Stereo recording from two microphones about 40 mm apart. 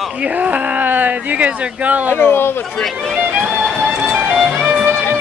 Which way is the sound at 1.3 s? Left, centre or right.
Right.